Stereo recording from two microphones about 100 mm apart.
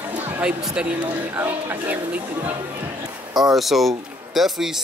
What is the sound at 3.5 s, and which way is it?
Speech, centre (ahead or behind).